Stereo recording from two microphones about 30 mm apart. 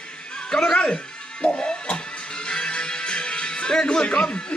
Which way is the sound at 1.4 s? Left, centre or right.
Left.